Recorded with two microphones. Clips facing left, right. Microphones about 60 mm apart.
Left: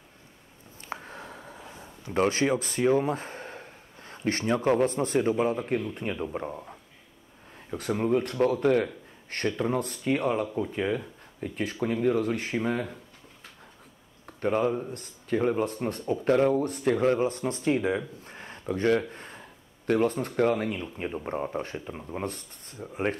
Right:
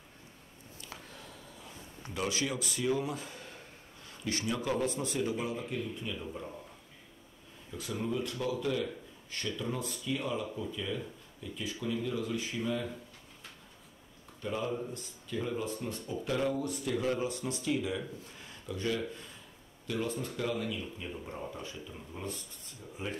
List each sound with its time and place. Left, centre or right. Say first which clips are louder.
0.7 s a sound: left 10 dB; left
2.1 s speech: left 10 dB; left
7.7 s speech: left 9 dB; left
14.2 s speech: left 10 dB; left